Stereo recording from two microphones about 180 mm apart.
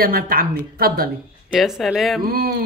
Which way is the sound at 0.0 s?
55° right (ahead or behind).